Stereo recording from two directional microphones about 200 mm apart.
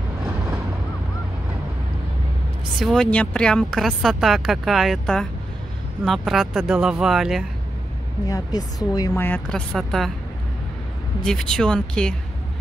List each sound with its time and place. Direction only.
2.8 s speech: centre (ahead or behind)
8.3 s a woman's voice: 20° left (ahead or behind)
9.1 s speech: 5° left (ahead or behind)
11.2 s speech: 5° left (ahead or behind)